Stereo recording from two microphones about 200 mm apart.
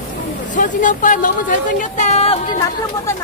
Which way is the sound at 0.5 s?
40° left (ahead or behind).